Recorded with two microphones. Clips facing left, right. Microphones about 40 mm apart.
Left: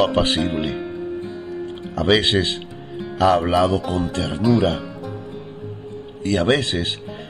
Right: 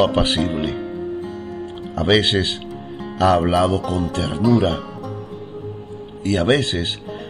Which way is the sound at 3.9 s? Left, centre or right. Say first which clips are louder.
Right 1 dB; left.